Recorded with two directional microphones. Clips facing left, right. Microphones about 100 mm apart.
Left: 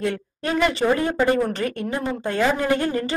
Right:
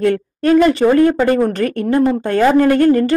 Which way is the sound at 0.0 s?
60° right (ahead or behind).